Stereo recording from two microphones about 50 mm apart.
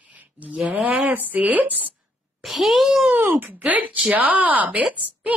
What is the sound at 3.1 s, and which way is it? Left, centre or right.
A woman's voice, right.